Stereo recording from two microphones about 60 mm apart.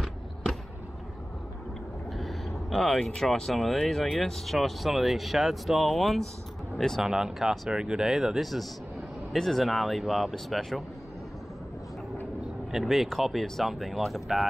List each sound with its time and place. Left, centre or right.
2.1 s vehicle: centre
3.2 s speech: centre
7.0 s speech: centre
12.7 s speech: centre